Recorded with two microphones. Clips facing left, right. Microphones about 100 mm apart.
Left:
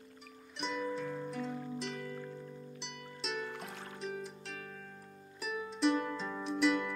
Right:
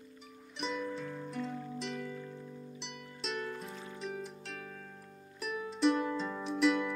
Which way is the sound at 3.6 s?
85° left.